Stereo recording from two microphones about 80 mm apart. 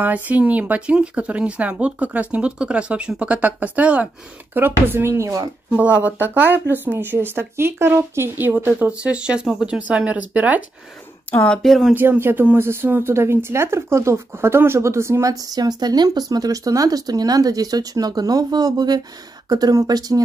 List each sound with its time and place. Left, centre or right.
0.0 s speech: centre
4.6 s speech: right
5.7 s speech: centre
11.4 s speech: centre
11.9 s speech: right